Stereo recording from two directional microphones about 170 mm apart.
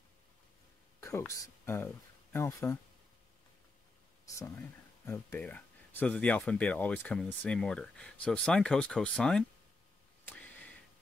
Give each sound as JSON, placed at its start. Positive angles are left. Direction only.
{"t": 1.0, "sound": "speech", "side_deg": 15}
{"t": 4.4, "sound": "speech", "side_deg": 15}
{"t": 10.2, "sound": "a sound", "side_deg": 10}